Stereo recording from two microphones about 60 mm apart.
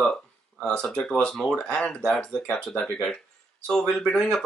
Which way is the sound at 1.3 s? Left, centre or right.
Centre.